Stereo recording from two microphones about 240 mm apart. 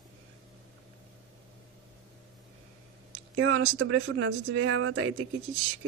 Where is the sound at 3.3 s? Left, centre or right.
Right.